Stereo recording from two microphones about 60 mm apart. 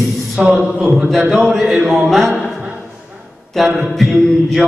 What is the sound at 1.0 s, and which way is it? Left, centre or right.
Speech, centre.